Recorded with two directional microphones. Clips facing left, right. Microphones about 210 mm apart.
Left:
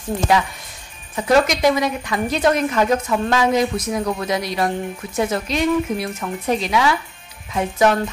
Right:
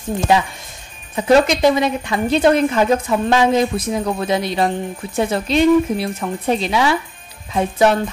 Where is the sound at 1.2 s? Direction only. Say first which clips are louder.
Right 3 dB; 25° right (ahead or behind).